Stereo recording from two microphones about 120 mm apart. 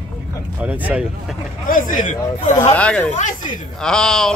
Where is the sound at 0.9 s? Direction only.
5° right (ahead or behind).